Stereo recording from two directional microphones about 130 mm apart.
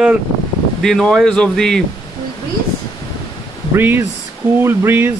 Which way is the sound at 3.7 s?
20° right (ahead or behind).